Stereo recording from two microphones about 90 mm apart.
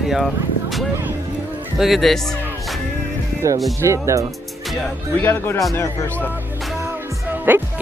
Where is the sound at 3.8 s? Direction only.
35° right (ahead or behind).